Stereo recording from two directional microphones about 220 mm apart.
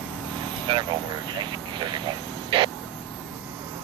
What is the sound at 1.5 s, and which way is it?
Radio, 20° right (ahead or behind).